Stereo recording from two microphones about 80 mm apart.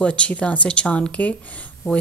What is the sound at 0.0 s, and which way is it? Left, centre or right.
Speech, centre.